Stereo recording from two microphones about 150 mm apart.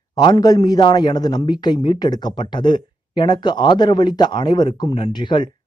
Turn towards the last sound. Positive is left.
turn(degrees=30)  # may be behind; listen again after turning